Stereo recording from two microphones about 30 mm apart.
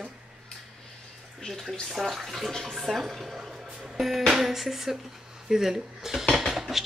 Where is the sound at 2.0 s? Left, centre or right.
Centre.